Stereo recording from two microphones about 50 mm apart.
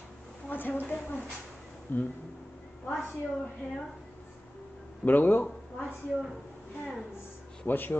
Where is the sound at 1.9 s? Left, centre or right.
Left.